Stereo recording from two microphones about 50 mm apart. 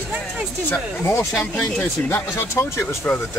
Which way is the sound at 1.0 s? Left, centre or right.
Left.